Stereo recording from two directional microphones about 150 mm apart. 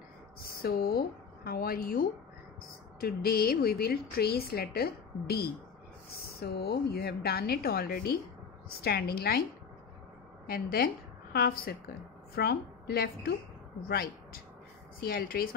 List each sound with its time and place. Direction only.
0.4 s a woman's voice: 90° left
3.0 s a woman's voice: 90° left
10.4 s a woman's voice: 80° left
11.3 s a woman's voice: 90° left; by 15.4 s 75° left (ahead or behind)